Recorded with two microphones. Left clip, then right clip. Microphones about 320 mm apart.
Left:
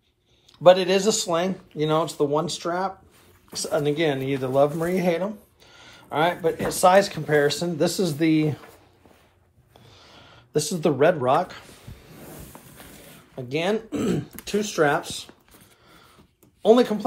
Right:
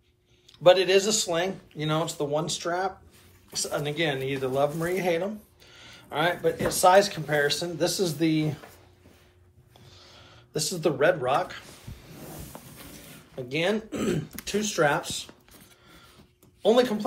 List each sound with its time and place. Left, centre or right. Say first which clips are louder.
0.5 s speech: left 3 dB; centre
9.8 s a sound: left 2 dB; left
13.5 s speech: left 2 dB; centre
16.6 s speech: left 4 dB; centre